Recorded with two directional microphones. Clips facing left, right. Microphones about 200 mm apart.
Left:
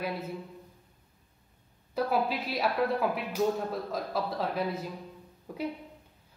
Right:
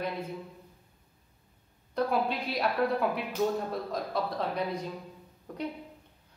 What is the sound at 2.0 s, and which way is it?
A woman's voice, 5° left (ahead or behind).